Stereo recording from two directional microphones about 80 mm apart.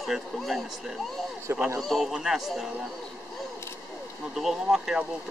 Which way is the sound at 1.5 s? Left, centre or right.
Right.